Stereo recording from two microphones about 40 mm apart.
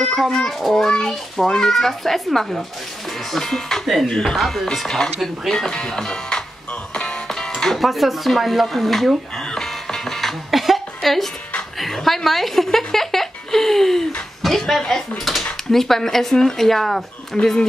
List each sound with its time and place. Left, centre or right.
0.3 s speech: centre
0.8 s speech: centre
6.9 s music: centre
7.2 s speech: centre
9.6 s music: centre
10.5 s a sound: centre
11.8 s a woman's voice: centre
17.4 s speech: centre